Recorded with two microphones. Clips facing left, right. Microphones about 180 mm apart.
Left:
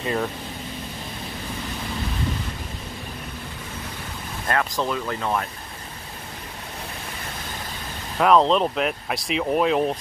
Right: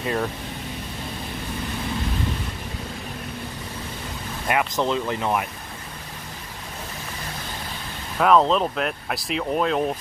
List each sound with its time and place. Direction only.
0.0 s speech: centre (ahead or behind)
4.5 s speech: 15° right (ahead or behind)
8.2 s speech: centre (ahead or behind)